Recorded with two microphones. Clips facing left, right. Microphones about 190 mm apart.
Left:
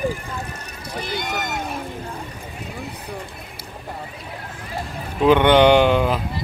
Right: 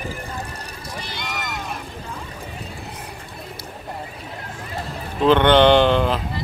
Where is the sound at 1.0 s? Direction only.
50° left (ahead or behind).